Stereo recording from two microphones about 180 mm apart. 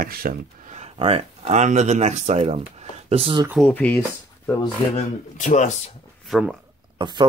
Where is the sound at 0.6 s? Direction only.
40° right (ahead or behind).